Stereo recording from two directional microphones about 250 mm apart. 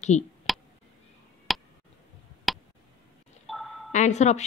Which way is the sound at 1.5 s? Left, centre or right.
Centre.